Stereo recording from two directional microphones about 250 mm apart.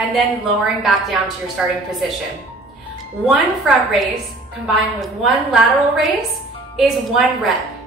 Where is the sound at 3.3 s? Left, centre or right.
Centre.